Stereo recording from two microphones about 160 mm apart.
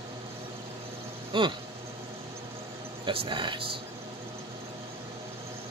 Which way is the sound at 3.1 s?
30° right (ahead or behind).